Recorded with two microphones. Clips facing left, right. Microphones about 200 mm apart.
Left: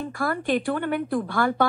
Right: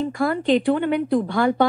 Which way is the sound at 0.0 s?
20° right (ahead or behind).